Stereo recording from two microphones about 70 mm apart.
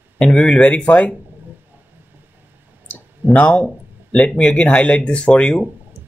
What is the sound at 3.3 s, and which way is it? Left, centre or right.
Speech, centre.